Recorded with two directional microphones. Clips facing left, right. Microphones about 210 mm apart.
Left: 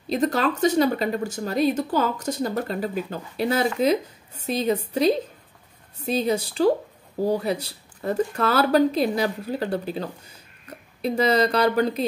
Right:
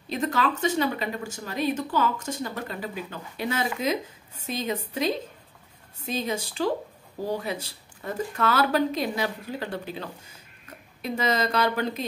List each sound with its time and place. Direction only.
0.1 s speech: 35° left (ahead or behind)